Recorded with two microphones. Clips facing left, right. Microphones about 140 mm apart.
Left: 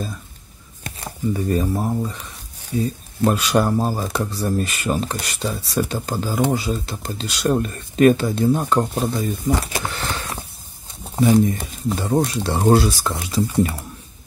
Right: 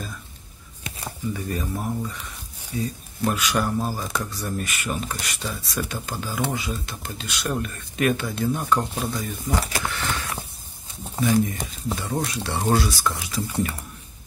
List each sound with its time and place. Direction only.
1.3 s speech: 35° left (ahead or behind)
3.3 s speech: 35° left (ahead or behind)
11.4 s speech: 35° left (ahead or behind)